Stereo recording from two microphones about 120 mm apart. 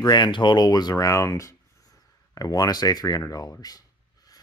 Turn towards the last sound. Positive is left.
turn(degrees=30)  # may be behind; listen again after turning